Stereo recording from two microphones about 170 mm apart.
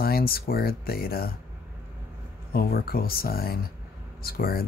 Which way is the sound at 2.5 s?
60° left (ahead or behind).